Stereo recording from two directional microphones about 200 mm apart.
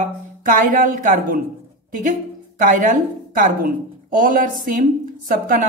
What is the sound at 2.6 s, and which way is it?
A woman's voice, 40° right (ahead or behind).